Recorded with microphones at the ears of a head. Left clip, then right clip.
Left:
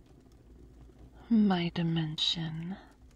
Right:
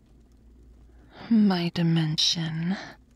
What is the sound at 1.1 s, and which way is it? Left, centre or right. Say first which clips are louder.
Speech: right 5 dB; right.